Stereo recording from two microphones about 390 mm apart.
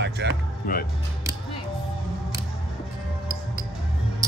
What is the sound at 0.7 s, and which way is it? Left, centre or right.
Speech, left.